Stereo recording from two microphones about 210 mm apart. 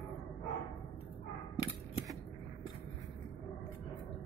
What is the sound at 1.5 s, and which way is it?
Typewriter, 25° left (ahead or behind).